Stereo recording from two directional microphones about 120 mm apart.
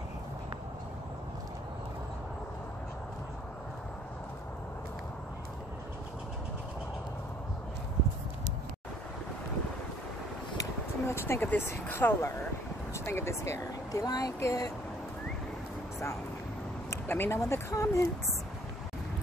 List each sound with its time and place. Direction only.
10.6 s speech: 20° left (ahead or behind)
16.9 s speech: 20° left (ahead or behind)